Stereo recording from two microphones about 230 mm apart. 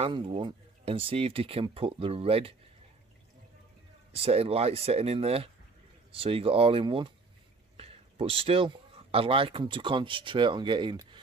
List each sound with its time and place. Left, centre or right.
0.0 s speech: right
4.1 s speech: right